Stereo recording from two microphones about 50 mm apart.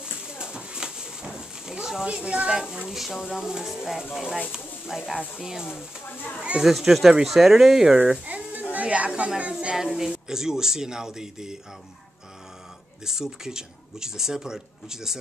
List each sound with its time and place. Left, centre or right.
0.0 s a sound: centre
2.0 s speech: centre
6.0 s speech: left
6.6 s speech: centre
8.3 s a sound: right
8.7 s speech: right
9.8 s speech: centre
13.0 s speech: centre